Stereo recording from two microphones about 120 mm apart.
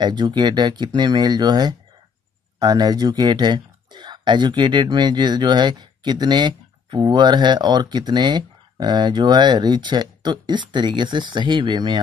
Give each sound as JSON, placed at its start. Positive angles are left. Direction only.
{"t": 0.0, "sound": "speech", "side_deg": -40}